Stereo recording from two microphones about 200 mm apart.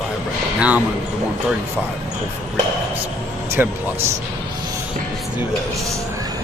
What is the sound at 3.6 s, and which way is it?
Speech, 10° right (ahead or behind).